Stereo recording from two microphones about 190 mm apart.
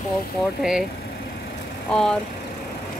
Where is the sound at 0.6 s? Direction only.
5° right (ahead or behind).